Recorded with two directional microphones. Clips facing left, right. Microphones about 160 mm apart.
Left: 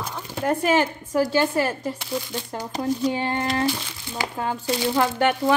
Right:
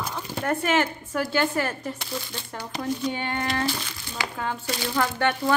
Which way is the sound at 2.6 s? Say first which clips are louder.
Left 4 dB; 40° left (ahead or behind).